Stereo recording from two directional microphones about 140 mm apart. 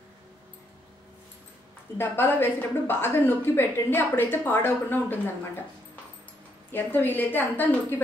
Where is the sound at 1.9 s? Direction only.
15° left (ahead or behind).